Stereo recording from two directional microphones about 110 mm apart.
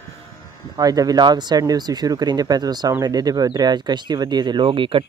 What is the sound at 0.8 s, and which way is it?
Speech, 35° right (ahead or behind).